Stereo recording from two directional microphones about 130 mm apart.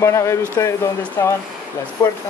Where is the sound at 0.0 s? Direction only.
20° left (ahead or behind).